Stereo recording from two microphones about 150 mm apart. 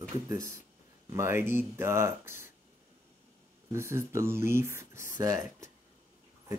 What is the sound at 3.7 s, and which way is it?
Speech, 15° right (ahead or behind).